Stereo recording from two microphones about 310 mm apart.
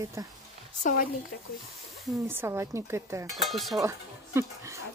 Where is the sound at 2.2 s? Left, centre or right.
Centre.